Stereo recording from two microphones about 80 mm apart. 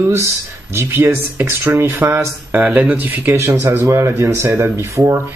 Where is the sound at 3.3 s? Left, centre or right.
Right.